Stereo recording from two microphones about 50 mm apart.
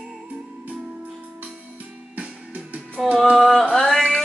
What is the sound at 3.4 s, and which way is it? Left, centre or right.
Music, centre.